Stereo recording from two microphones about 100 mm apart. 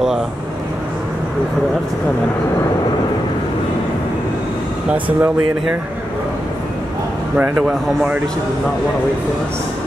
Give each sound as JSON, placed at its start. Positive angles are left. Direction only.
{"t": 4.9, "sound": "speech", "side_deg": -15}
{"t": 7.3, "sound": "speech", "side_deg": -15}